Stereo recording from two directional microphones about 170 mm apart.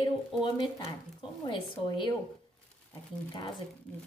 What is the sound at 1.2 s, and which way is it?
Speech, 30° left (ahead or behind).